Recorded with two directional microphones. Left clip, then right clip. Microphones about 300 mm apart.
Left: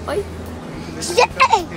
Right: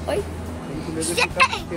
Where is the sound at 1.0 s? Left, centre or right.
Centre.